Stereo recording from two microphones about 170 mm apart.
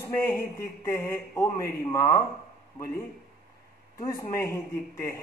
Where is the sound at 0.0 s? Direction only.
15° left (ahead or behind).